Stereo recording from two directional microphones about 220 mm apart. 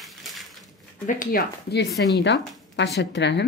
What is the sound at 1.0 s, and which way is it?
Speech, 40° left (ahead or behind).